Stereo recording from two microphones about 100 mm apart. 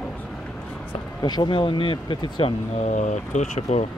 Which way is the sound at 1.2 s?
45° left (ahead or behind).